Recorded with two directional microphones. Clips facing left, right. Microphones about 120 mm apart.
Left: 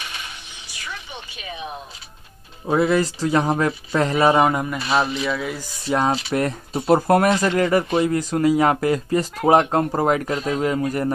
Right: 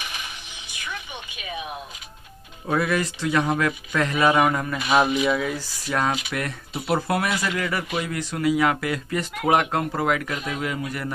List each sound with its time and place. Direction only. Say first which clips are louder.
0.8 s music: even; 15° right (ahead or behind)
1.3 s speech: even; 30° left (ahead or behind)
4.7 s speech: right 1 dB; 15° right (ahead or behind)
5.6 s speech: left 4 dB; 25° left (ahead or behind); by 11.1 s 40° left (ahead or behind)